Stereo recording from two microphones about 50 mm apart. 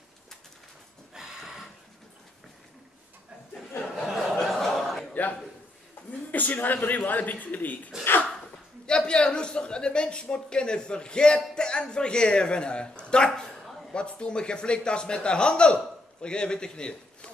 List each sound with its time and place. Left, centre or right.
1.1 s a sound: centre
3.9 s chuckle: centre
6.3 s speech: left
8.8 s a man's voice: centre